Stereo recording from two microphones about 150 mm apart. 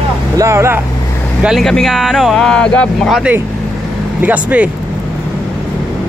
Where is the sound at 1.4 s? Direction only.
Centre (ahead or behind).